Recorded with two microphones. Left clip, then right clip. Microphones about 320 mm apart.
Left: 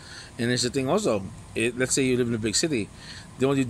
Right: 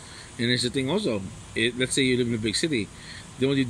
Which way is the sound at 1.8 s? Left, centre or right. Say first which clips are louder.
Even; centre.